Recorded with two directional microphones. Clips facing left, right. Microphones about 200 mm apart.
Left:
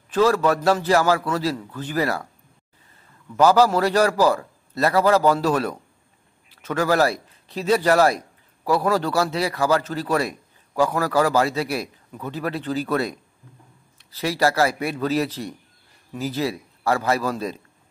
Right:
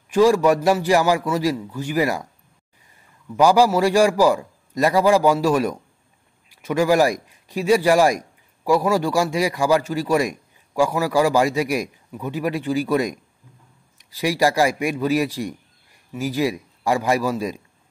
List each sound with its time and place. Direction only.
0.1 s a man's voice: 15° right (ahead or behind)
3.3 s a man's voice: 10° right (ahead or behind)